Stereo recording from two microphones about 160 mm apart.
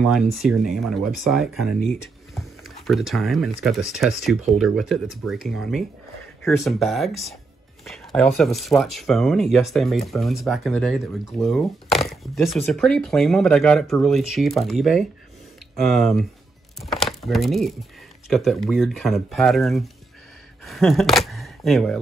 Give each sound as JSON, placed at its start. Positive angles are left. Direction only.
{"t": 0.0, "sound": "speech", "side_deg": 0}
{"t": 2.9, "sound": "speech", "side_deg": 0}